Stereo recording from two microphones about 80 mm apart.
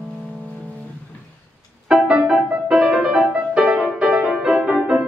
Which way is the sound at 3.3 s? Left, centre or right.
Centre.